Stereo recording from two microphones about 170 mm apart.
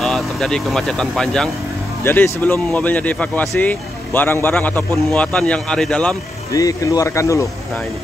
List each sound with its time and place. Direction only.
0.0 s speech: centre (ahead or behind)
6.5 s speech: 20° left (ahead or behind)